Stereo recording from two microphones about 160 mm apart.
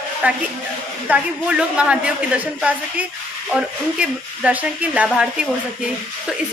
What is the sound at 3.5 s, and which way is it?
A woman's voice, 5° right (ahead or behind).